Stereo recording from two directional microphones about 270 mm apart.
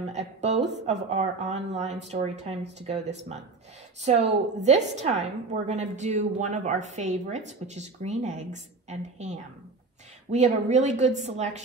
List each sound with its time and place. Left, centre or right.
0.1 s a woman's voice: right